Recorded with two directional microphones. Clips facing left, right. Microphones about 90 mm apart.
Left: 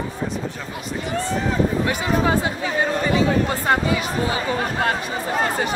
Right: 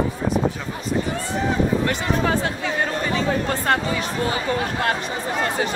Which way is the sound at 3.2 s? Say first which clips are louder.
Left 3 dB; 5° left (ahead or behind).